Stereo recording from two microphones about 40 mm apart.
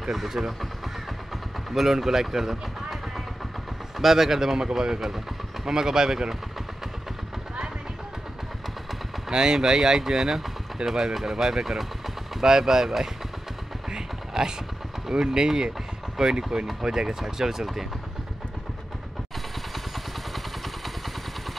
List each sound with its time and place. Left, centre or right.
0.0 s speech: centre
1.7 s speech: centre
4.0 s speech: centre
9.3 s speech: centre
13.9 s a sound: centre
15.0 s speech: centre